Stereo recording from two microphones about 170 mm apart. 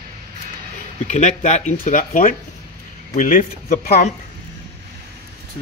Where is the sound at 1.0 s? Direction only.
45° left (ahead or behind).